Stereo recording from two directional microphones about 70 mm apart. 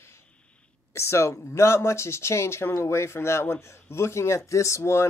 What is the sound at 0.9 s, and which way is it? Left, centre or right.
Speech, left.